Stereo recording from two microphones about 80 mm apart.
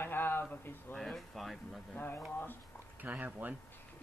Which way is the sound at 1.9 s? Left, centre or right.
Left.